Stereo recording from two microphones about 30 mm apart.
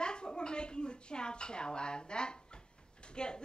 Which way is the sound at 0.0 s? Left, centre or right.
Left.